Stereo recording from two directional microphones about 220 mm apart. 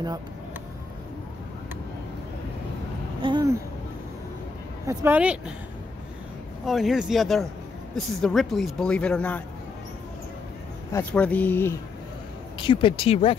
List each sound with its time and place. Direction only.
3.2 s a sound: 20° right (ahead or behind)
4.8 s speech: 10° right (ahead or behind)
6.6 s a man's voice: centre (ahead or behind)
10.9 s speech: 10° left (ahead or behind)
12.5 s speech: 20° left (ahead or behind)